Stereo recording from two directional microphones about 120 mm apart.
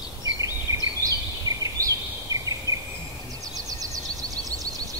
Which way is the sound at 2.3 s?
25° right (ahead or behind).